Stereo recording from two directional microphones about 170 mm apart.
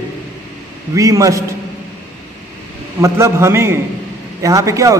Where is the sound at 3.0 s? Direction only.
15° right (ahead or behind).